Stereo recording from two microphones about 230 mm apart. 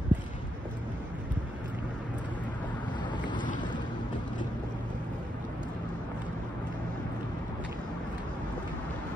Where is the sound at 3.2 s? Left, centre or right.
Centre.